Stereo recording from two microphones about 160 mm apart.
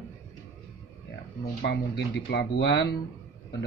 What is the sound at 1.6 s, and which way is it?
Speech, 90° left.